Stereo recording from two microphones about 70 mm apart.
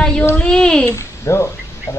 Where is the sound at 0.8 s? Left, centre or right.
Left.